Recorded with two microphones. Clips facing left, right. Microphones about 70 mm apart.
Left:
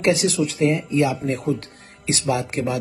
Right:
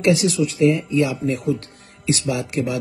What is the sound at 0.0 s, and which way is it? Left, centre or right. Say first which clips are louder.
A man's voice: right 1 dB; left.